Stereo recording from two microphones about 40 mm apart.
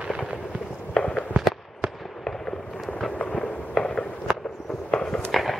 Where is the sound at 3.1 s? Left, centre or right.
Left.